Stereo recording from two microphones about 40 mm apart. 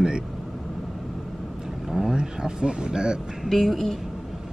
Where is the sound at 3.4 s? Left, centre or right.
Centre.